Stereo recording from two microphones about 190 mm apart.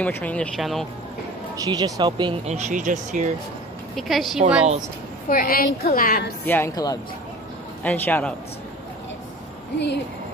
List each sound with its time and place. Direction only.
0.0 s speech: 5° left (ahead or behind)
1.6 s speech: 20° right (ahead or behind)
2.4 s speech: 35° right (ahead or behind)
3.9 s a woman's voice: centre (ahead or behind)
5.3 s a woman's voice: 50° left (ahead or behind)
6.4 s speech: 10° left (ahead or behind)